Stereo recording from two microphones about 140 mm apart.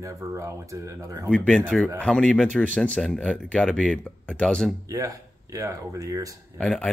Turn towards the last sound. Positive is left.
turn(degrees=5)  # may be behind; listen again after turning